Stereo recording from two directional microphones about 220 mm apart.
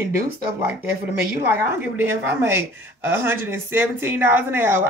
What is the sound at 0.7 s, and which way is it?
Speech, 10° right (ahead or behind).